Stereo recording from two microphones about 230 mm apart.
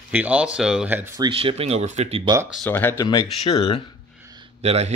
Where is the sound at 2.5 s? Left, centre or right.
Centre; by 3.9 s left.